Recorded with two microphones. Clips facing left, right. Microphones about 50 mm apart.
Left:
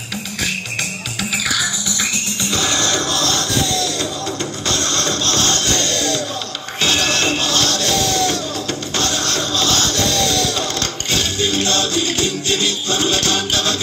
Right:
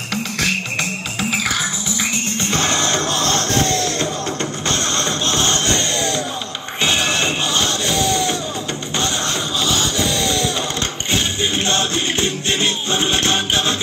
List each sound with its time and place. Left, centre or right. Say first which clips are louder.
0.1 s music: right 3 dB; right
1.3 s music: left 1 dB; right